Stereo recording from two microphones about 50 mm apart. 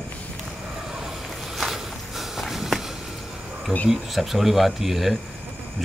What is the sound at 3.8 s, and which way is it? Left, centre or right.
Speech, centre.